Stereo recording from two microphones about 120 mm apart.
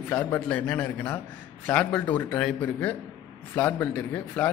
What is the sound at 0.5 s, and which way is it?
A man's voice, 15° left (ahead or behind).